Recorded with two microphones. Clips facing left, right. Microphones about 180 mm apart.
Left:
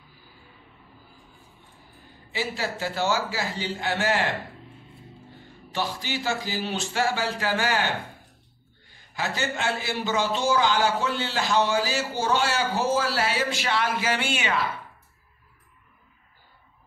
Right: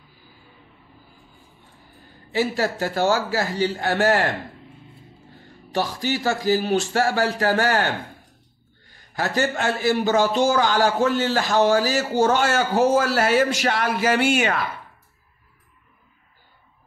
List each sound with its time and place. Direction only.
2.3 s a man's voice: 45° right (ahead or behind)
5.7 s a man's voice: 45° right (ahead or behind)
9.1 s a man's voice: 45° right (ahead or behind)